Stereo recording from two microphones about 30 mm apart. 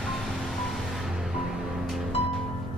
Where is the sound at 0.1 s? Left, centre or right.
Centre.